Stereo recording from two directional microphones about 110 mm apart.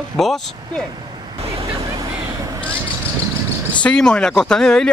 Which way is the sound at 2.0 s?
35° right (ahead or behind).